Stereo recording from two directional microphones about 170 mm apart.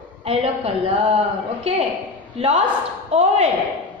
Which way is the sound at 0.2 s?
35° right (ahead or behind).